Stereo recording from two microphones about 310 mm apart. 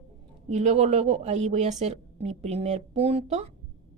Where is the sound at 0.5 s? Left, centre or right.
Right.